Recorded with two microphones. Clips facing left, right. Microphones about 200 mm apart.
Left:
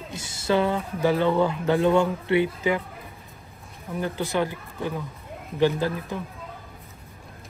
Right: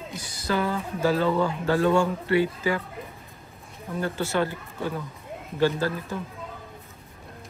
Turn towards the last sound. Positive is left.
turn(degrees=15)  # may be behind; listen again after turning